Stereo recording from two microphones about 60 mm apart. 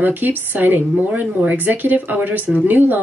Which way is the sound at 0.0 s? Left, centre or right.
Right.